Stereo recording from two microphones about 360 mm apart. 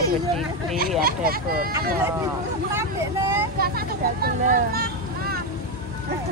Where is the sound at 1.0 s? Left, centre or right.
Right.